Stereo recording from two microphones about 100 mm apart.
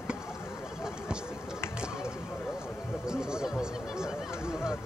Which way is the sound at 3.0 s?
5° right (ahead or behind).